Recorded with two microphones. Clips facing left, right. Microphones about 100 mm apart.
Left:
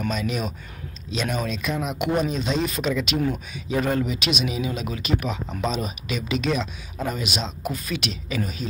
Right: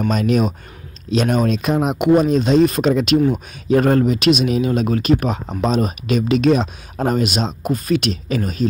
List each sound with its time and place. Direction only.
0.1 s speech: 55° right (ahead or behind)
2.0 s speech: 45° right (ahead or behind)